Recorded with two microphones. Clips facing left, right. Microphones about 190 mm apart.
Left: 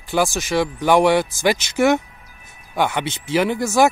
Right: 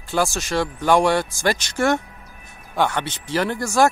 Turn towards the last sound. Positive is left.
turn(degrees=10)  # may be behind; listen again after turning